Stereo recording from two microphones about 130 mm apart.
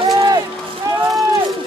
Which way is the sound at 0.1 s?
25° right (ahead or behind).